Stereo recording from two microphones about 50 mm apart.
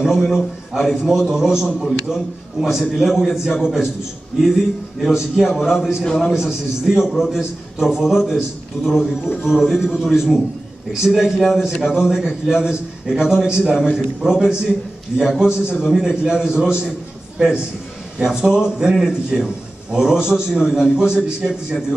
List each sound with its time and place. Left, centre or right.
0.0 s a man's voice: centre
5.0 s a man's voice: centre
18.2 s a man's voice: centre